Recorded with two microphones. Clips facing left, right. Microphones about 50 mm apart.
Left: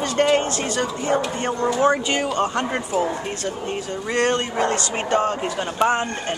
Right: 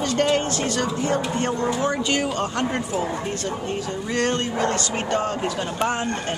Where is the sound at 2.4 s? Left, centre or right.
Centre.